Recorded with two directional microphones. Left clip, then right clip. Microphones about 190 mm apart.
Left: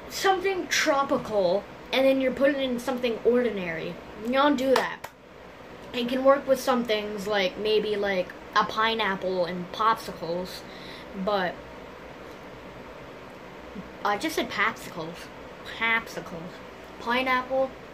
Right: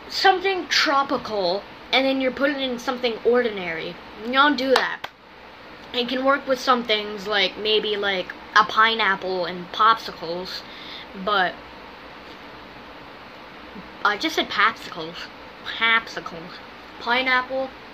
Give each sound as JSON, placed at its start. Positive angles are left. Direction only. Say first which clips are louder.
{"t": 0.1, "sound": "speech", "louder": "right 6 dB", "side_deg": 20}
{"t": 5.9, "sound": "speech", "louder": "right 1 dB", "side_deg": 15}
{"t": 14.0, "sound": "speech", "louder": "right 5 dB", "side_deg": 10}
{"t": 17.0, "sound": "a woman's voice", "louder": "right 4 dB", "side_deg": 20}